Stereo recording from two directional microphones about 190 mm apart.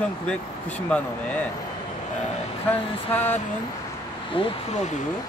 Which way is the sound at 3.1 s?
10° left (ahead or behind).